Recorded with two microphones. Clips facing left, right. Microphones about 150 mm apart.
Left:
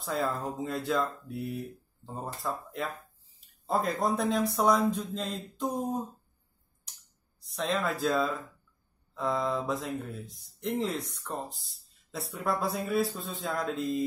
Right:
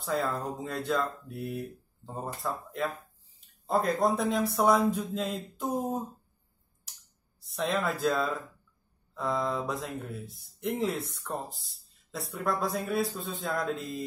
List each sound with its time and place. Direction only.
0.0 s speech: centre (ahead or behind)
7.4 s speech: centre (ahead or behind)